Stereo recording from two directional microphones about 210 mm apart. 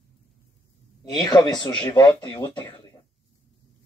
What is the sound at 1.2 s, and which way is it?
Speech, 20° left (ahead or behind).